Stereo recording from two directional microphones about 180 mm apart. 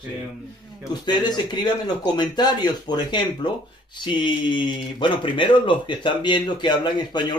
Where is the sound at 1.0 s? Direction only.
25° left (ahead or behind).